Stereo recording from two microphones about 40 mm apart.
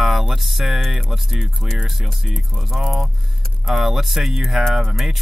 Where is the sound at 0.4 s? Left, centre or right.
Centre.